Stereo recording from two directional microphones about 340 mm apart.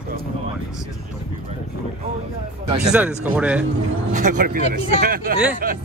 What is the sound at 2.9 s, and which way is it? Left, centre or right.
Speech, centre.